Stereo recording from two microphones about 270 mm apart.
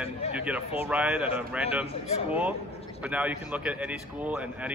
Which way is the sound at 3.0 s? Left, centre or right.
Centre.